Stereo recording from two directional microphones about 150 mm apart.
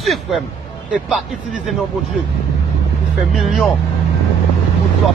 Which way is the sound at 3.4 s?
Centre (ahead or behind).